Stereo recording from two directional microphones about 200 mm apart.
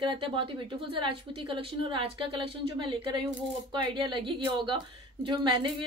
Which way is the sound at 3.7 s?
25° right (ahead or behind).